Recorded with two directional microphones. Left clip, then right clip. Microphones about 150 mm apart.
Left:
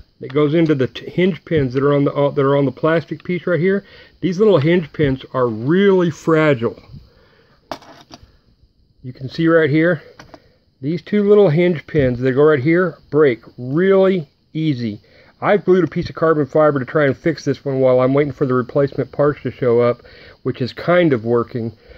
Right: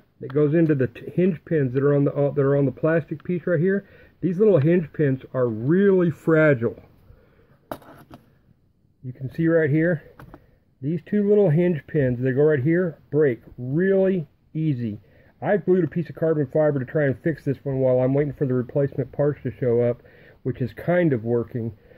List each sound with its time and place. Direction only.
0.4 s speech: 15° left (ahead or behind)
7.6 s a sound: 5° left (ahead or behind)
9.2 s speech: 20° left (ahead or behind)